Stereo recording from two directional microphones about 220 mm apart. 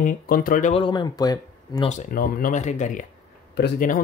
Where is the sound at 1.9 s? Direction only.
35° left (ahead or behind).